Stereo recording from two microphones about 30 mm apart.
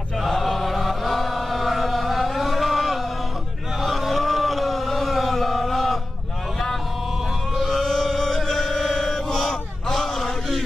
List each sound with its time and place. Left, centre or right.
0.4 s chant: centre
3.8 s a sound: centre
7.5 s music: centre
7.8 s chant: centre